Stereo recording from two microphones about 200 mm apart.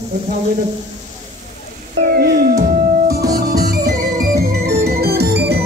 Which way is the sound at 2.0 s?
50° right (ahead or behind).